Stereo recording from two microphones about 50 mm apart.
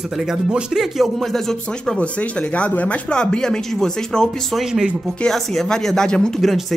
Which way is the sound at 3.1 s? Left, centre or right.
Centre.